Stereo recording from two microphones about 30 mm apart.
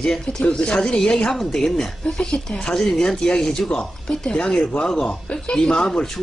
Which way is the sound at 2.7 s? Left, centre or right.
Left.